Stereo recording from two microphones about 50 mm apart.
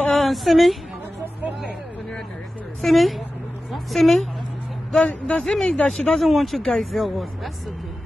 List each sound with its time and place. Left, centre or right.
0.1 s a sound: centre
2.8 s a woman's voice: centre
4.9 s speech: left
6.2 s a woman's voice: centre